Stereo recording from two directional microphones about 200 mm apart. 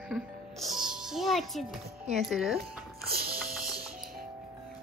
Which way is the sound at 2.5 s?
50° right (ahead or behind).